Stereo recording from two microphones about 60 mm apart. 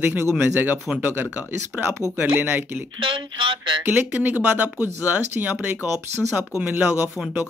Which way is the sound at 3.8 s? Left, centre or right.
Right.